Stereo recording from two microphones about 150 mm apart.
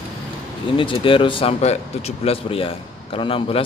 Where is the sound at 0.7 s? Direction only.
35° left (ahead or behind).